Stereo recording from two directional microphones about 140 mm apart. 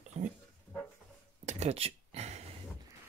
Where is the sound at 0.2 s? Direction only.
65° right (ahead or behind).